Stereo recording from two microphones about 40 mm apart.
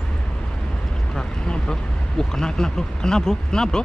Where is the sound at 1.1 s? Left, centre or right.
Centre.